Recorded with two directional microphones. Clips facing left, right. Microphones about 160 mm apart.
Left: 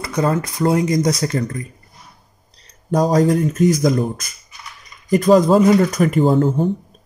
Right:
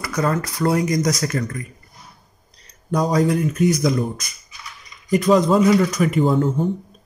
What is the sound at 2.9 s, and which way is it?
Speech, 45° left (ahead or behind).